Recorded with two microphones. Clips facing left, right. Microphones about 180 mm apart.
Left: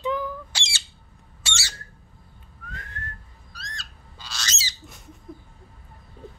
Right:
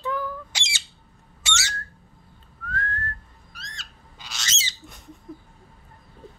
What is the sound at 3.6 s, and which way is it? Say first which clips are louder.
Squawk: left 3 dB; 20° right (ahead or behind).